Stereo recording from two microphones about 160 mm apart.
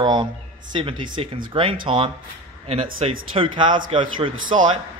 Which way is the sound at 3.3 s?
30° right (ahead or behind).